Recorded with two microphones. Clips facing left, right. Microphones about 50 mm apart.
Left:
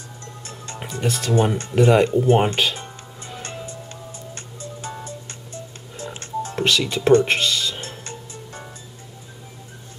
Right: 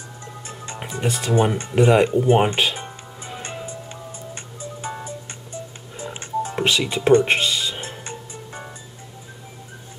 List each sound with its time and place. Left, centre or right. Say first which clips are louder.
0.2 s music: right 2 dB; centre